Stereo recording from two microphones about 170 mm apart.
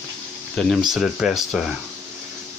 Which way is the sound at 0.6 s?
Centre (ahead or behind).